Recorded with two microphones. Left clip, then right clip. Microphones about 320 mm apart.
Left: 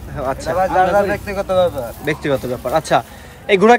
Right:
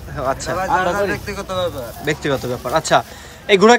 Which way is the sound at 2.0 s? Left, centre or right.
Centre.